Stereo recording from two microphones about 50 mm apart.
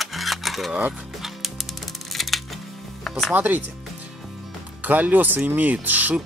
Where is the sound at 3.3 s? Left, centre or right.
Right.